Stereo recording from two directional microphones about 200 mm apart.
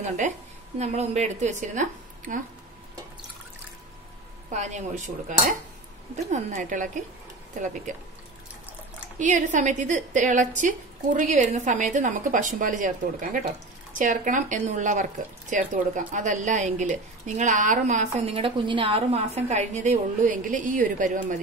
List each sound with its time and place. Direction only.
0.7 s a woman's voice: 35° right (ahead or behind)
4.5 s a woman's voice: 35° right (ahead or behind)
9.2 s a woman's voice: 40° right (ahead or behind)